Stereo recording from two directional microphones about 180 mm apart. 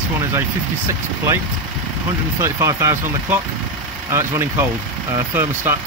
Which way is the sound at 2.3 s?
15° right (ahead or behind).